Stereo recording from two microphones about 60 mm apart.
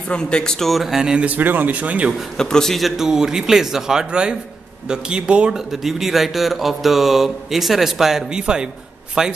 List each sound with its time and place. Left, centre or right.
0.1 s speech: centre
1.2 s speech: right
2.3 s a man's voice: centre
3.0 s speech: centre
5.7 s speech: centre